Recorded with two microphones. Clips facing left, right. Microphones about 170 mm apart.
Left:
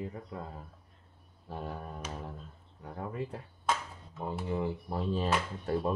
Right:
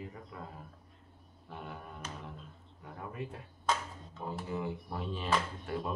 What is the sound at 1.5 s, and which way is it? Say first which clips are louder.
Speech: left 5 dB; 35° left (ahead or behind).